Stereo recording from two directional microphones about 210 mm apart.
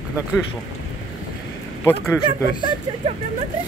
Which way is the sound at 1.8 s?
10° left (ahead or behind).